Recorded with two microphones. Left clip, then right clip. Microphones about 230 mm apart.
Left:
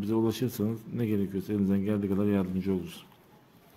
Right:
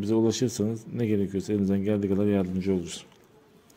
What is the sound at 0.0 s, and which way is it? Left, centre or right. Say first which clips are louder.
Speech: right 4 dB; centre.